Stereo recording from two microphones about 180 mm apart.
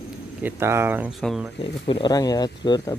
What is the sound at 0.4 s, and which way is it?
Speech, 10° right (ahead or behind).